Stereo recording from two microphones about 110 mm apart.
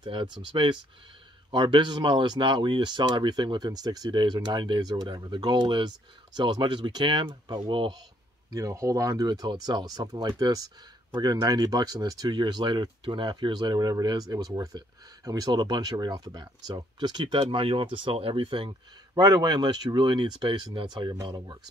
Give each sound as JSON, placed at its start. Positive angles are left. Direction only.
{"t": 0.0, "sound": "speech", "side_deg": -45}
{"t": 8.5, "sound": "speech", "side_deg": -30}